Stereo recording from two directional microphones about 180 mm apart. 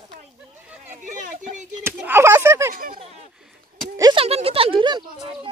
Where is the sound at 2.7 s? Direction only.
50° right (ahead or behind).